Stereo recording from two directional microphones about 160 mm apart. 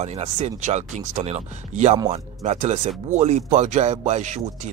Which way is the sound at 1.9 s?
25° right (ahead or behind).